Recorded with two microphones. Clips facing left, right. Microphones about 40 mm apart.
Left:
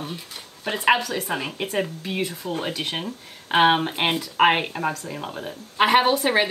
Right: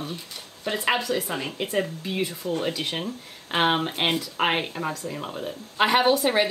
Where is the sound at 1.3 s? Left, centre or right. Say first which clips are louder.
Left 2 dB; left.